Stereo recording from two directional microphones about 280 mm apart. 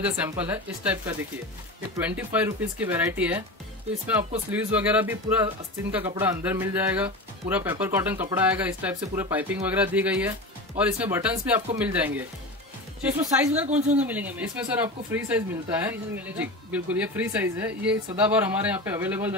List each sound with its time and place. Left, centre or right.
0.0 s speech: centre
4.5 s speech: centre
13.7 s speech: right
13.9 s speech: centre